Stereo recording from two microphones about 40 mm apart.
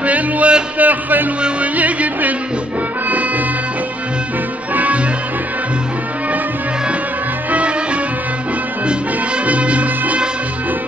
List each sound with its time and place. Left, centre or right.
0.0 s music: right
0.7 s speech: right
1.6 s music: right
4.7 s music: right
7.5 s music: right
9.5 s music: right